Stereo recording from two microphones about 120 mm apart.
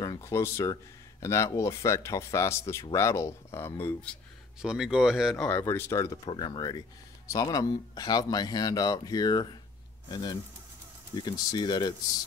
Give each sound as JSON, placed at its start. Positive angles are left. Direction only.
{"t": 0.0, "sound": "speech", "side_deg": 30}
{"t": 4.6, "sound": "speech", "side_deg": -5}
{"t": 5.4, "sound": "speech", "side_deg": 15}
{"t": 6.3, "sound": "speech", "side_deg": 40}